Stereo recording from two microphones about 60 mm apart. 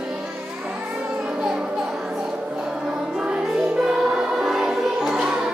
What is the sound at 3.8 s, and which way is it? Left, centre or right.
Choir, centre.